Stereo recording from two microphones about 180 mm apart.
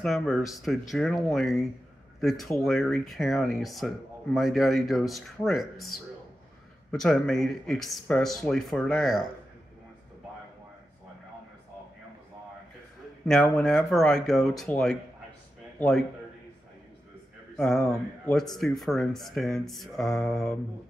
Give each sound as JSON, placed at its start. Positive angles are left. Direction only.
{"t": 0.0, "sound": "speech", "side_deg": 0}
{"t": 6.9, "sound": "speech", "side_deg": 0}
{"t": 13.2, "sound": "speech", "side_deg": 5}
{"t": 17.6, "sound": "speech", "side_deg": 0}